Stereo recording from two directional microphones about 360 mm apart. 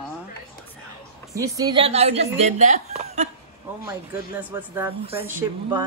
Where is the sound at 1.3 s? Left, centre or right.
Centre.